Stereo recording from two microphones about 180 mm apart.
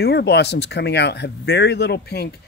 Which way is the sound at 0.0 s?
65° left (ahead or behind).